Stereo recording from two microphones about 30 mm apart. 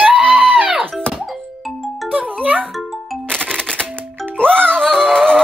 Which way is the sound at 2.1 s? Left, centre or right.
Right.